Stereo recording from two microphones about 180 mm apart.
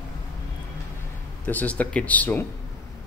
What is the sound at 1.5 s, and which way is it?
Speech, 10° left (ahead or behind).